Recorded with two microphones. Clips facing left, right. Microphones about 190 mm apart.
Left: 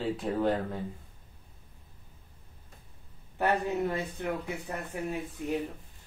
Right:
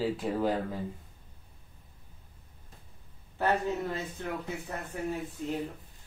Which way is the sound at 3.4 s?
15° left (ahead or behind).